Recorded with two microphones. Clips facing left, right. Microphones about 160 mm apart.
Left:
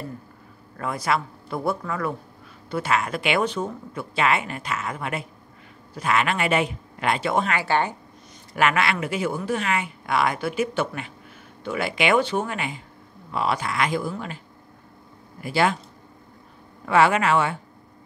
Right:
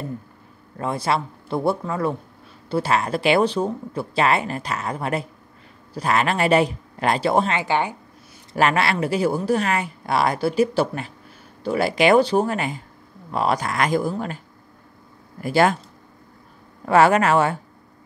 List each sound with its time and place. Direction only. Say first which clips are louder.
0.7 s speech: right 2 dB; 30° right (ahead or behind)
7.5 s speech: right 1 dB; 15° right (ahead or behind)
8.5 s speech: right 2 dB; 35° right (ahead or behind)
15.4 s speech: right 4 dB; 45° right (ahead or behind)
16.8 s speech: right 3 dB; 40° right (ahead or behind)